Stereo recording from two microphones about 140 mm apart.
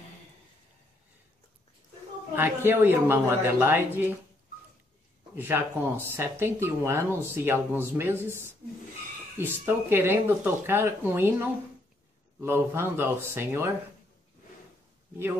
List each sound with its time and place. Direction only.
2.3 s speech: 15° right (ahead or behind)
5.4 s speech: 15° right (ahead or behind)